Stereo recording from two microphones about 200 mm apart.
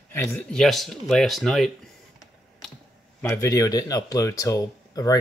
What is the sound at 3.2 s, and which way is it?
Speech, 15° left (ahead or behind).